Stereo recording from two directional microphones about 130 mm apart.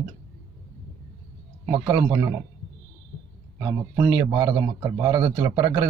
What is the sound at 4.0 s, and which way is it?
A man's voice, 30° right (ahead or behind).